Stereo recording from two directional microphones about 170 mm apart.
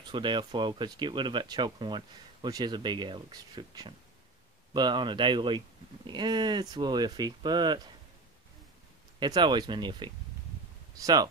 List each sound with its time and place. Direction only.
0.0 s speech: 30° right (ahead or behind)
9.2 s speech: 25° right (ahead or behind)